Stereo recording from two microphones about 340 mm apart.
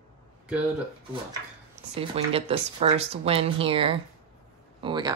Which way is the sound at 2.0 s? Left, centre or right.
Centre.